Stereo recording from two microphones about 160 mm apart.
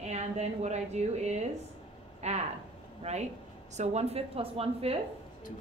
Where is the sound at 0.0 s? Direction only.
45° right (ahead or behind).